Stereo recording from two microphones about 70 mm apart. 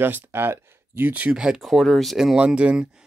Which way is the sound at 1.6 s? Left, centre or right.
Centre.